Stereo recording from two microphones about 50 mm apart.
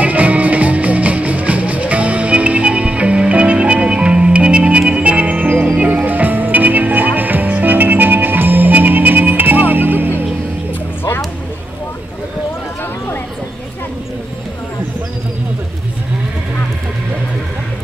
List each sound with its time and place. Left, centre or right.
0.0 s music: right